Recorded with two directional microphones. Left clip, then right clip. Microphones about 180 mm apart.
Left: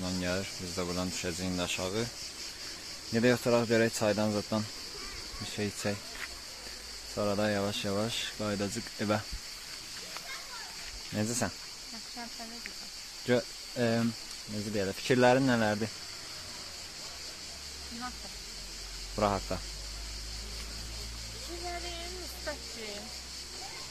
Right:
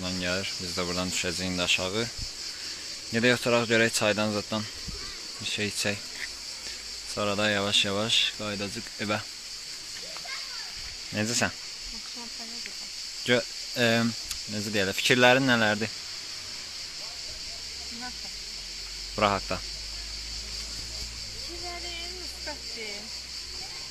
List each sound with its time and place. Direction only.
0.0 s speech: centre (ahead or behind)
3.1 s speech: centre (ahead or behind)
7.2 s speech: centre (ahead or behind)
11.2 s speech: centre (ahead or behind)
13.3 s speech: 5° right (ahead or behind)
15.0 s speech: 5° right (ahead or behind)
19.1 s speech: 10° right (ahead or behind)